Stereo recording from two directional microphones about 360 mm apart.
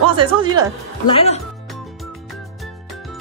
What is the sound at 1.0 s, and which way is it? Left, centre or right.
Speech, centre.